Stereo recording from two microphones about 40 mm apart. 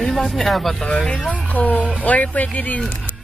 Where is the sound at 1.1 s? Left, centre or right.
Left.